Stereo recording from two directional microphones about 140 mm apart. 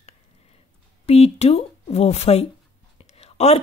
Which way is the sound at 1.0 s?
50° left (ahead or behind).